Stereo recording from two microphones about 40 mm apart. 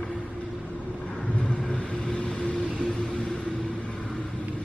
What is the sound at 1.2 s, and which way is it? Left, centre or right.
Vehicle, left.